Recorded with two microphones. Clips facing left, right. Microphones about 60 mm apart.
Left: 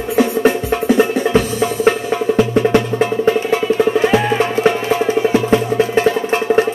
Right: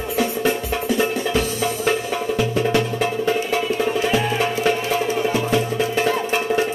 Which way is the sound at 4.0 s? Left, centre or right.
Left.